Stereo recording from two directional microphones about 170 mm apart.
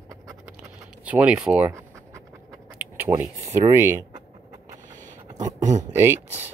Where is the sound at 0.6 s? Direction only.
10° right (ahead or behind).